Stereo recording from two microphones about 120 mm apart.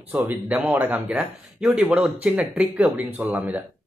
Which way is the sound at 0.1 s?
15° right (ahead or behind).